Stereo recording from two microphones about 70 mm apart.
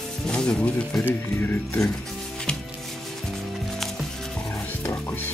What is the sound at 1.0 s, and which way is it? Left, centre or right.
Speech, left.